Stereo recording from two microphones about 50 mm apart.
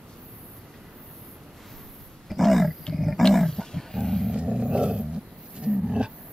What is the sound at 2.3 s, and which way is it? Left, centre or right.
Roaring cats, centre.